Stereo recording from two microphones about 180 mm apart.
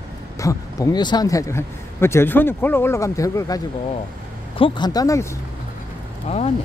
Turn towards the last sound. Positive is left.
turn(degrees=35)  # may be behind; listen again after turning